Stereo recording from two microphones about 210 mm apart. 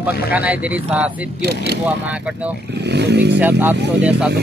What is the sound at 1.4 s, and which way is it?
Speech, 50° right (ahead or behind).